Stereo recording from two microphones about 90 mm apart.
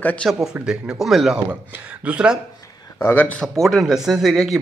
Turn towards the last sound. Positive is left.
turn(degrees=0)  # may be behind; listen again after turning